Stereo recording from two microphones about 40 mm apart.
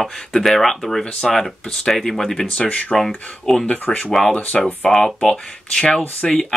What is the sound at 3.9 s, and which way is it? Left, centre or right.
Speech, left.